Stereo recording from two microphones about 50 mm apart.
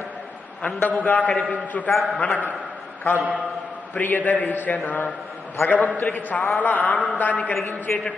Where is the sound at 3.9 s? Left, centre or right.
Left.